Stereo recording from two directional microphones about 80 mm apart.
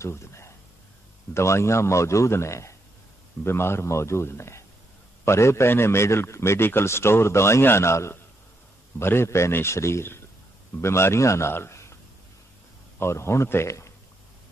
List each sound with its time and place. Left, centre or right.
0.0 s a sound: left
1.3 s a man's voice: left
13.0 s a man's voice: left